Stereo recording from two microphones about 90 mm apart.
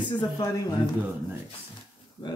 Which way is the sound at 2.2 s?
55° left (ahead or behind).